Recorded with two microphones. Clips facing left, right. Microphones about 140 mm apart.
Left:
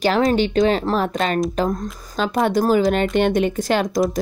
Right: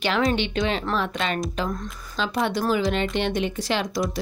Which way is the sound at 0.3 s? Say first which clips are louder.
Left 7 dB; 40° left (ahead or behind).